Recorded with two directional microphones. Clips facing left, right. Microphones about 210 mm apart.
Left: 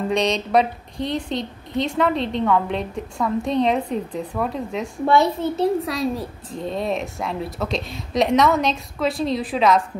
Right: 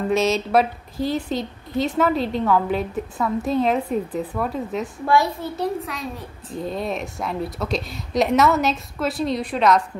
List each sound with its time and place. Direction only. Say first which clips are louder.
0.1 s a woman's voice: right 1 dB; 5° right (ahead or behind)
5.0 s a child's voice: left 3 dB; 25° left (ahead or behind)
5.9 s a child's voice: left 8 dB; 35° left (ahead or behind)
6.5 s a woman's voice: left 1 dB; centre (ahead or behind)